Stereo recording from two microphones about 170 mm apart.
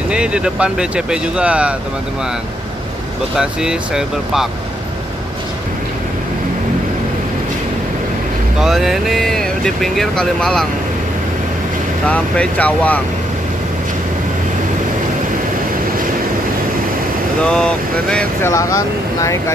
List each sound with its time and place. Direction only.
0.1 s speech: 5° right (ahead or behind)
3.3 s speech: 5° right (ahead or behind)
8.5 s speech: centre (ahead or behind)
12.1 s speech: 10° left (ahead or behind)
17.4 s speech: 5° left (ahead or behind)
18.5 s speech: 20° left (ahead or behind)